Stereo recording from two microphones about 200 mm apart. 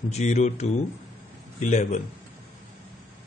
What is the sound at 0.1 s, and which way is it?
A man's voice, 35° left (ahead or behind).